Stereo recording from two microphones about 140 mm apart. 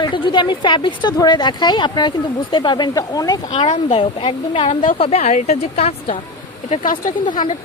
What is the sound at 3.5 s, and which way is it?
A woman's voice, 40° left (ahead or behind).